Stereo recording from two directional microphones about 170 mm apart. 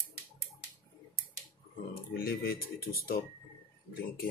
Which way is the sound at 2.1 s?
65° left (ahead or behind).